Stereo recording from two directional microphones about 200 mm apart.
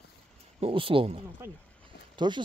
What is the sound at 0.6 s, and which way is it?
Speech, 30° right (ahead or behind).